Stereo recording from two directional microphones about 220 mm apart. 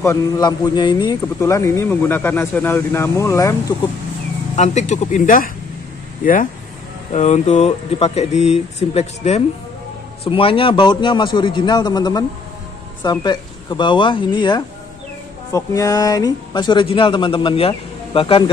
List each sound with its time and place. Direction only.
0.0 s a man's voice: 15° left (ahead or behind)
4.6 s speech: 30° left (ahead or behind)
7.1 s speech: 30° left (ahead or behind)